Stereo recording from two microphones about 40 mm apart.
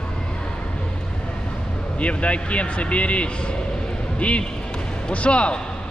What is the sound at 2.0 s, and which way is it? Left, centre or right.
Speech, left.